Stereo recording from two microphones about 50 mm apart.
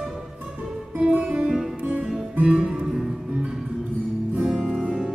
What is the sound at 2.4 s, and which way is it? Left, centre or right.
Music, right.